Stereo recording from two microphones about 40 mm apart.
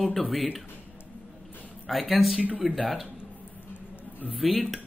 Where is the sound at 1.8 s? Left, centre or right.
Centre.